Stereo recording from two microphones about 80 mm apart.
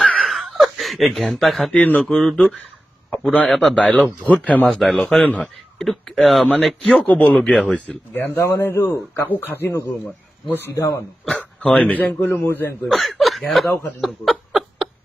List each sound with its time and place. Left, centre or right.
0.2 s a sound: centre
1.8 s a man's voice: centre
3.4 s speech: centre
3.7 s speech: centre
5.4 s speech: centre
7.3 s speech: centre
8.1 s a man's voice: left
11.2 s dog: centre
12.3 s speech: left
12.8 s speech: centre
14.0 s a sound: centre